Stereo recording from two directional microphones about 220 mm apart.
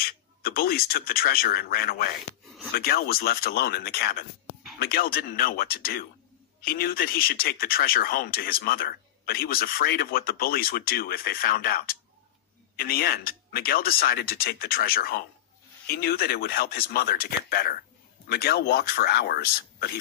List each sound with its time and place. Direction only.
0.0 s speech: 45° left (ahead or behind)